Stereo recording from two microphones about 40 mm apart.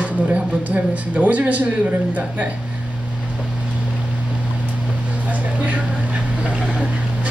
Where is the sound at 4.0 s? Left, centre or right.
Right.